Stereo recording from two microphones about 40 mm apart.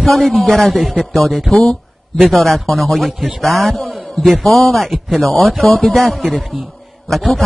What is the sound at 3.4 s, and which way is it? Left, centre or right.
A man's voice, centre.